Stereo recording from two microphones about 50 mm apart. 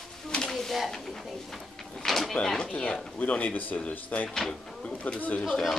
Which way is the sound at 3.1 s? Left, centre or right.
Left.